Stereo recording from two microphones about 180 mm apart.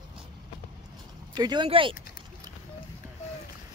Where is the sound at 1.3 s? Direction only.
25° right (ahead or behind).